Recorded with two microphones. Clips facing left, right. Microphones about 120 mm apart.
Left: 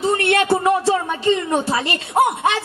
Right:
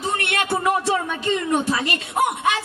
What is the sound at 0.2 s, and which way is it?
A woman's voice, 30° left (ahead or behind).